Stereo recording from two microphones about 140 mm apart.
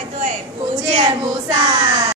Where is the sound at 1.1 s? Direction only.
30° right (ahead or behind).